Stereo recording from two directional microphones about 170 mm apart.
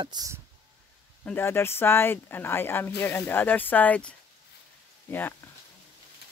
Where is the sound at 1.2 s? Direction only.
15° left (ahead or behind).